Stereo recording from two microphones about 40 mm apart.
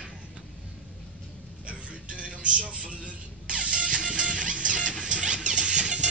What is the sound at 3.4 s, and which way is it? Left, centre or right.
Music, right.